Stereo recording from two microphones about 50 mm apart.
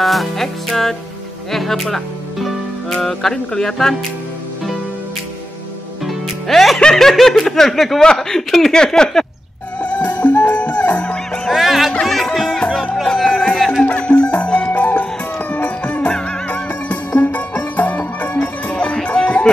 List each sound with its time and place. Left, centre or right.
0.0 s speech: centre
6.4 s speech: centre
6.8 s speech: centre
7.1 s speech: centre
9.8 s music: left
11.4 s music: centre
13.9 s music: left
14.7 s music: left
16.1 s music: centre
16.4 s music: left
18.7 s music: left